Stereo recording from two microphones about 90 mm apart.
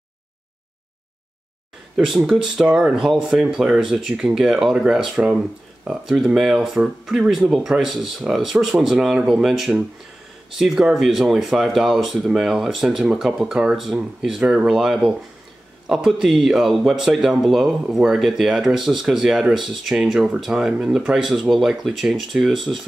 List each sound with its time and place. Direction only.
2.0 s speech: 5° right (ahead or behind)